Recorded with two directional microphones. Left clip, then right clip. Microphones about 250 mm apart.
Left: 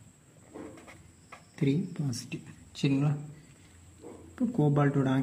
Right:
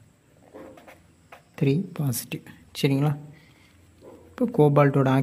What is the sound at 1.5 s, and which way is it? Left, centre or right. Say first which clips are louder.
Speech: right 5 dB; right.